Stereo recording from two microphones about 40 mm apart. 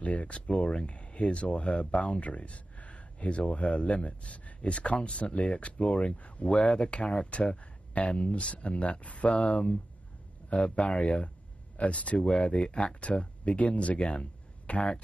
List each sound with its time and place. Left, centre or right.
0.0 s speech: left